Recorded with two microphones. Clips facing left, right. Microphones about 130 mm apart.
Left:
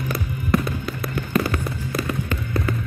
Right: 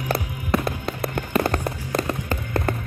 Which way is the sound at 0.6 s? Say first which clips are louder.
Right 1 dB; 55° right (ahead or behind).